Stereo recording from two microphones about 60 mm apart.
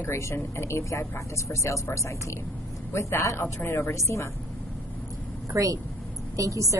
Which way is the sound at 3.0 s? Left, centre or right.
Left.